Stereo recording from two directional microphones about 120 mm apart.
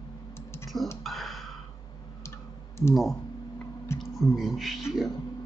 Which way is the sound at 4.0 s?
Centre (ahead or behind).